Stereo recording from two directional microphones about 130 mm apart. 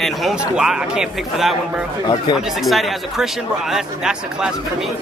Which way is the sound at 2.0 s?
30° left (ahead or behind).